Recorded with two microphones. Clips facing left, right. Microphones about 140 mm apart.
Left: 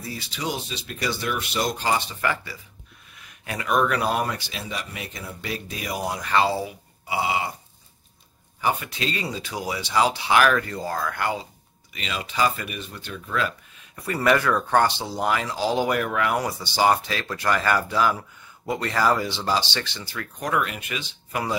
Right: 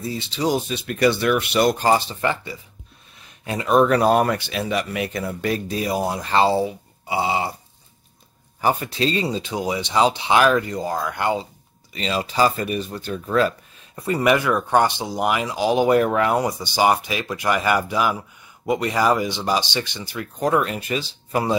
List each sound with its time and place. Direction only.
0.0 s speech: 25° right (ahead or behind)
0.5 s speech: 55° right (ahead or behind)
1.9 s speech: 35° right (ahead or behind)
5.8 s speech: 30° right (ahead or behind)
8.5 s speech: 40° right (ahead or behind); by 11.4 s 20° right (ahead or behind)
11.9 s speech: 35° right (ahead or behind)
14.0 s speech: 20° right (ahead or behind)
16.0 s speech: 30° right (ahead or behind)
16.4 s speech: 15° right (ahead or behind)
20.3 s speech: 30° right (ahead or behind)